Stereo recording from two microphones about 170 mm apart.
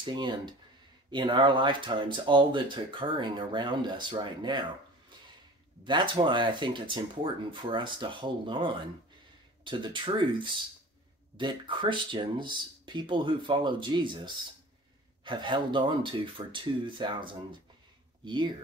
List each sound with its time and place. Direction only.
0.0 s speech: 25° right (ahead or behind)
5.9 s speech: 25° right (ahead or behind)